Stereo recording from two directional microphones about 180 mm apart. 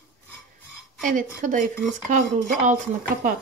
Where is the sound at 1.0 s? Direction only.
45° right (ahead or behind).